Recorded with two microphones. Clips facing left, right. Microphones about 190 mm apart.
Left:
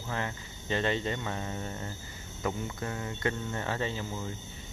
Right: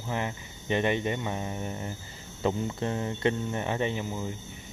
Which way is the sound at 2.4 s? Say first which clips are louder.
Right 5 dB; 25° right (ahead or behind).